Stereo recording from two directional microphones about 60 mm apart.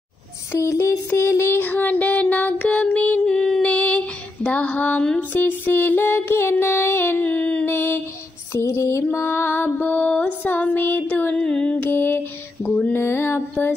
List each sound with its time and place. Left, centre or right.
0.5 s child singing: left
3.3 s female singing: centre
3.6 s female singing: centre
5.3 s music: left
7.6 s a sound: left
8.5 s music: left
11.3 s music: centre
11.7 s lullaby: left
13.0 s mantra: left